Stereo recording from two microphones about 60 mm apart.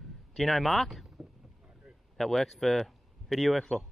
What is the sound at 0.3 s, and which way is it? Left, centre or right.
Speech, centre.